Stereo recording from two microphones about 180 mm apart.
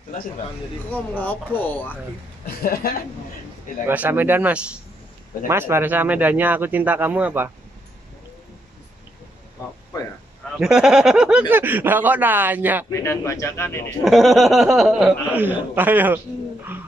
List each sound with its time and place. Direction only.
0.9 s speech: 10° left (ahead or behind)
2.4 s a woman's voice: 55° left (ahead or behind)
3.8 s speech: 10° right (ahead or behind)
10.6 s speech: 5° right (ahead or behind)
12.9 s speech: 15° left (ahead or behind)
14.0 s speech: centre (ahead or behind)